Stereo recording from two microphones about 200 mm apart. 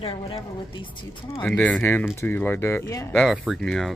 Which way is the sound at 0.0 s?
25° left (ahead or behind).